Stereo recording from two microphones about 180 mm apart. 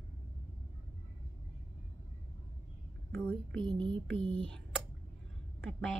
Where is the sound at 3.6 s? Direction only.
25° right (ahead or behind).